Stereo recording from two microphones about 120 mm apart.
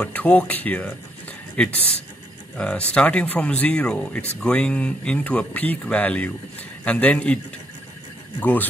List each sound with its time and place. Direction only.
0.0 s speech: 15° left (ahead or behind)
8.4 s speech: 15° left (ahead or behind)